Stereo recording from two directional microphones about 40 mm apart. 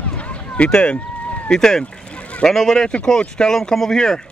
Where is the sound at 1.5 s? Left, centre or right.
Centre.